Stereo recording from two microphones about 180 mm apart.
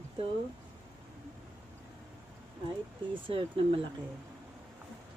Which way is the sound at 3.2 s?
30° right (ahead or behind).